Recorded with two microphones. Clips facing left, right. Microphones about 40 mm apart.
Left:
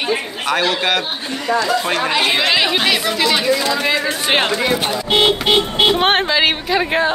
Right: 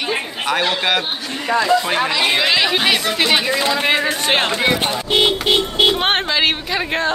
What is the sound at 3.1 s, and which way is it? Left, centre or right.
Speech, centre.